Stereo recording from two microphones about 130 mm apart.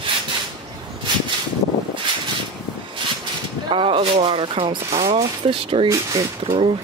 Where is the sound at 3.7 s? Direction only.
45° right (ahead or behind).